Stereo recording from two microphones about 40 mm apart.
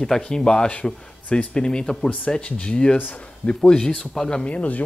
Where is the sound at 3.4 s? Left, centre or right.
Left.